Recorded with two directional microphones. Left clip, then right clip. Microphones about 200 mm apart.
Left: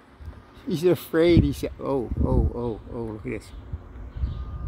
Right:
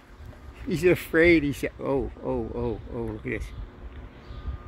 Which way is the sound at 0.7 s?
65° left (ahead or behind).